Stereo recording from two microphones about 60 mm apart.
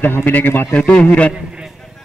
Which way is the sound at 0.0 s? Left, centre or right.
Left.